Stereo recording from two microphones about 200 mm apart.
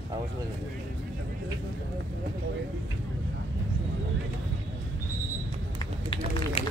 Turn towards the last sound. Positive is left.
turn(degrees=30)  # may be behind; listen again after turning